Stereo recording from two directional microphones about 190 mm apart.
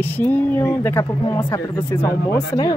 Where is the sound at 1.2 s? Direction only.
25° left (ahead or behind).